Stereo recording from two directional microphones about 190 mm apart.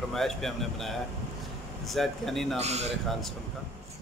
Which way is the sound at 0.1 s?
Centre (ahead or behind).